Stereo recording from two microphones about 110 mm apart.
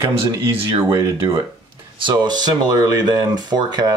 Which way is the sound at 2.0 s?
40° right (ahead or behind).